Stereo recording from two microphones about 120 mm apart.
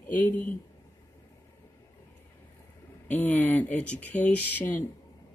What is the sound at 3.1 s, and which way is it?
Speech, 15° left (ahead or behind).